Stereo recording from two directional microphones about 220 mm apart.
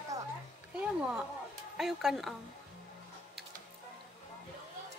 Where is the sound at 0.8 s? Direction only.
5° right (ahead or behind).